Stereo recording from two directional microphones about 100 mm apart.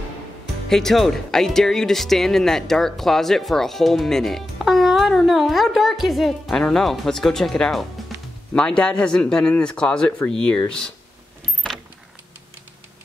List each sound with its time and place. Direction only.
0.7 s speech: 5° left (ahead or behind)